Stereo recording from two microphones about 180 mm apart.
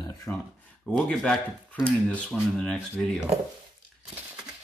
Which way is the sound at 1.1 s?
Centre (ahead or behind).